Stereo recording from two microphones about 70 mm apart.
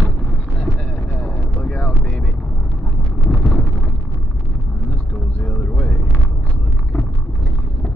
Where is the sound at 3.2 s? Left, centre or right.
Centre.